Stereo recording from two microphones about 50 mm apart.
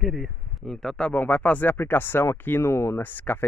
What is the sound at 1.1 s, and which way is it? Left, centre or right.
Speech, left.